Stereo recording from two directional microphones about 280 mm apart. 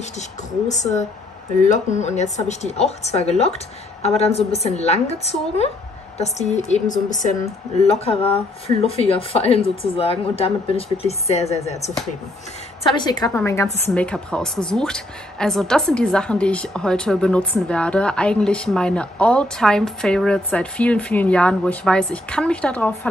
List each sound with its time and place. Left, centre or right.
0.7 s a woman's voice: left
12.9 s a woman's voice: centre